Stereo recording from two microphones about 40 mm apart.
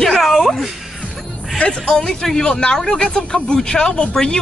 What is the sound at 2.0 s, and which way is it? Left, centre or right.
A woman's voice, centre.